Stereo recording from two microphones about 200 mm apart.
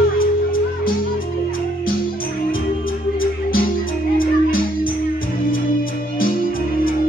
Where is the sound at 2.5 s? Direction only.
45° left (ahead or behind).